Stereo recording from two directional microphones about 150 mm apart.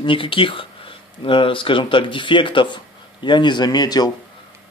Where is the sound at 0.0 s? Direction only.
35° left (ahead or behind).